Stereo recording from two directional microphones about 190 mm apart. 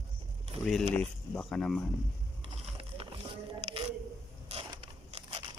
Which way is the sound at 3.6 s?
30° right (ahead or behind).